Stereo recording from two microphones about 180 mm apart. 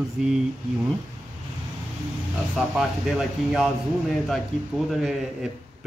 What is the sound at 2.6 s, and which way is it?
Speech, 5° right (ahead or behind).